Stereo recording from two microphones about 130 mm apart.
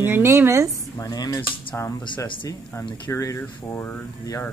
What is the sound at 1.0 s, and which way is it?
Vehicle, 30° left (ahead or behind).